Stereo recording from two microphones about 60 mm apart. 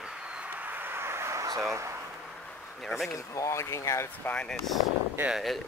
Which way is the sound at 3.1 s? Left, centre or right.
Left.